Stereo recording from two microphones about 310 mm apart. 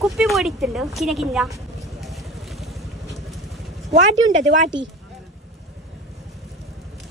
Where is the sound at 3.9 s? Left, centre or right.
Right.